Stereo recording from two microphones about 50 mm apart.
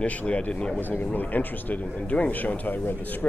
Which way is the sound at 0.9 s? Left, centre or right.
Left.